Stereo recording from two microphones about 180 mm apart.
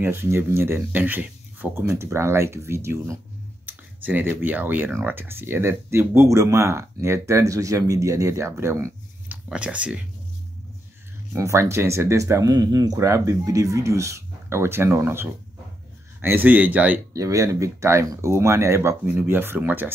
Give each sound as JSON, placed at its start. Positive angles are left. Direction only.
{"t": 0.0, "sound": "speech", "side_deg": -15}
{"t": 11.3, "sound": "speech", "side_deg": -15}